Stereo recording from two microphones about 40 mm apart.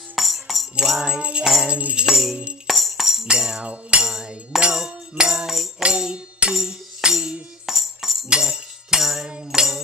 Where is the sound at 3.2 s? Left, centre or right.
Centre.